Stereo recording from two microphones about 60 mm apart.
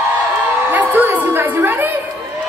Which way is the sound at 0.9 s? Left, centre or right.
Right.